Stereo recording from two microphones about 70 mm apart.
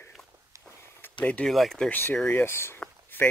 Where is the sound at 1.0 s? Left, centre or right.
Left.